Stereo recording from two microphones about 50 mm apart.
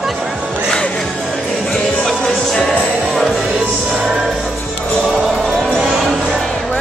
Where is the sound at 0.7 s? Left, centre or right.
Centre.